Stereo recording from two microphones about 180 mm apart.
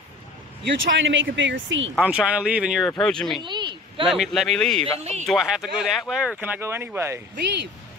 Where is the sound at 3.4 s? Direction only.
25° right (ahead or behind).